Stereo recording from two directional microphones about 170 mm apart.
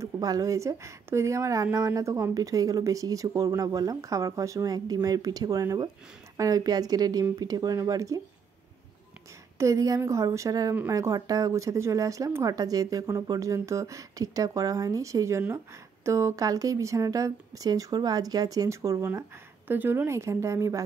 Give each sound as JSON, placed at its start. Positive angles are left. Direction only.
{"t": 0.0, "sound": "speech", "side_deg": -20}
{"t": 9.6, "sound": "speech", "side_deg": -20}